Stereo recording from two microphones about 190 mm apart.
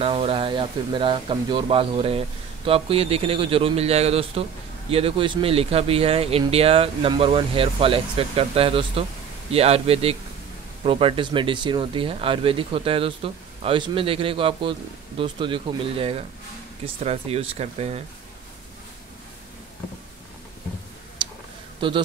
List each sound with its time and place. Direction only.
0.0 s speech: 30° right (ahead or behind)
21.7 s a man's voice: 25° right (ahead or behind)